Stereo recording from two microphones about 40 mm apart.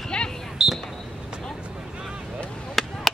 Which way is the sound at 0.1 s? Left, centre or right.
Left.